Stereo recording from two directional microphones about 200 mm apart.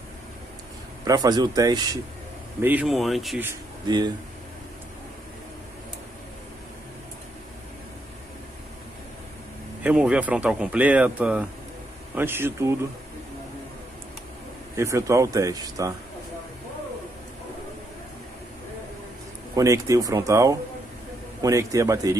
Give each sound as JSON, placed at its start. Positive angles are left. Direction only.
{"t": 1.0, "sound": "speech", "side_deg": -20}
{"t": 2.6, "sound": "speech", "side_deg": -5}
{"t": 3.4, "sound": "speech", "side_deg": -20}
{"t": 9.8, "sound": "speech", "side_deg": -5}
{"t": 14.8, "sound": "speech", "side_deg": -15}
{"t": 19.5, "sound": "speech", "side_deg": -15}